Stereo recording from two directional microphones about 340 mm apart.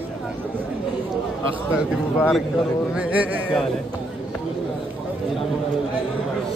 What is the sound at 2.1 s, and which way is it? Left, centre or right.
Speech, centre.